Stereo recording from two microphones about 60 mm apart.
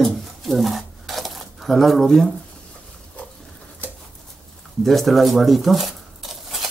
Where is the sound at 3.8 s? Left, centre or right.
Left.